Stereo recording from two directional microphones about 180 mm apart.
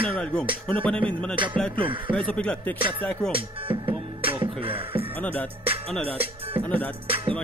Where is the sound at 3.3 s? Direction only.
30° right (ahead or behind).